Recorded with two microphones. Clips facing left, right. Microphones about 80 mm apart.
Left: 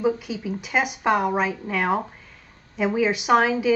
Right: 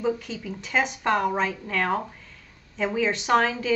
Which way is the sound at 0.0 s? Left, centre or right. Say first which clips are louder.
Left 3 dB; centre.